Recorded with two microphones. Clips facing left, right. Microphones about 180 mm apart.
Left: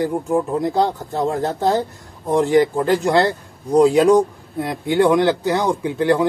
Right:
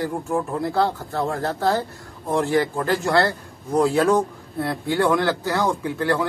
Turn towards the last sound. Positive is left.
turn(degrees=20)  # may be behind; listen again after turning